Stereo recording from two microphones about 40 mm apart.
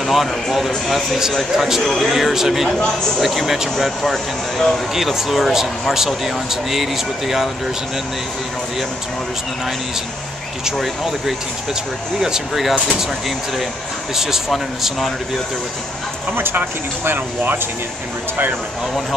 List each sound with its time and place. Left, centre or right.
0.0 s speech: centre
4.0 s speech: centre
4.9 s speech: centre
10.8 s speech: centre
14.1 s speech: centre
14.8 s speech: centre
16.5 s speech: right